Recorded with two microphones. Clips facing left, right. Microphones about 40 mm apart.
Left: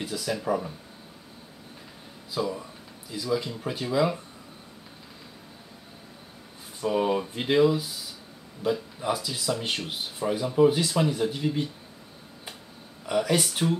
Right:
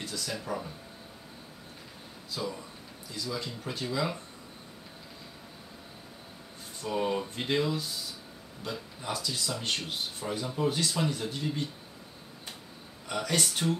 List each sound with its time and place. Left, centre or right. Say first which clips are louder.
0.0 s speech: left 7 dB; centre
2.3 s speech: left 6 dB; centre
6.8 s speech: left 5 dB; centre
13.0 s speech: left 6 dB; centre